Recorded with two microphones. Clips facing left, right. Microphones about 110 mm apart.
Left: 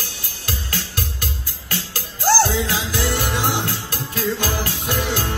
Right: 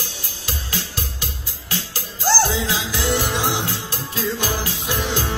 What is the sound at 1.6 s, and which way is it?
Music, 50° left (ahead or behind).